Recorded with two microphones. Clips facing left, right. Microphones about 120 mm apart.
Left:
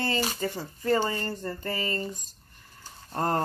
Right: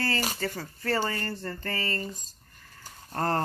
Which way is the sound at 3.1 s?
15° left (ahead or behind).